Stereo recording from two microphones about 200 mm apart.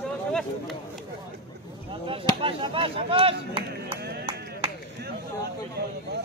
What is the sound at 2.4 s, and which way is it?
Speech, 25° right (ahead or behind).